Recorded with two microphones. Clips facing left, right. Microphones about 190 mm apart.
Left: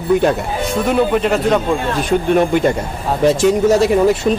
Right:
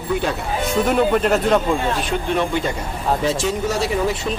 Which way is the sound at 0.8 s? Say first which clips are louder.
Left 3 dB; centre (ahead or behind).